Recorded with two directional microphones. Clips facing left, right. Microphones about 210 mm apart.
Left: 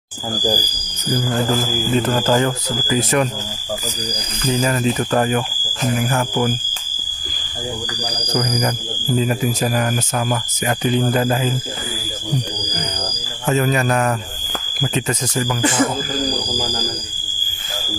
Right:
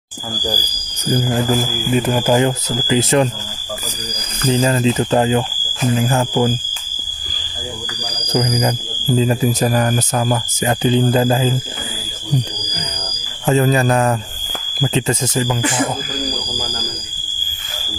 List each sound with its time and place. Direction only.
1.1 s speech: 20° right (ahead or behind)
1.9 s speech: 10° right (ahead or behind)
4.5 s speech: 30° right (ahead or behind)
8.3 s speech: 20° right (ahead or behind)
13.5 s a man's voice: 30° right (ahead or behind)